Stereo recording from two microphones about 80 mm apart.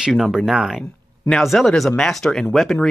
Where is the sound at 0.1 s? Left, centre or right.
Centre.